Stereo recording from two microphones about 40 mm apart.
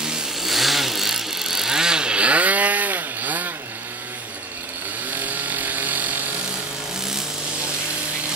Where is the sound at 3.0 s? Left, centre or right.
Right.